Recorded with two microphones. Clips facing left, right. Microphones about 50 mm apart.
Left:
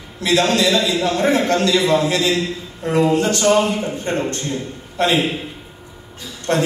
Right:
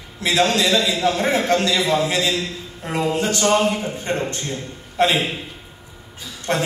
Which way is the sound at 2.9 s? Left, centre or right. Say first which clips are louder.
Left 5 dB; centre.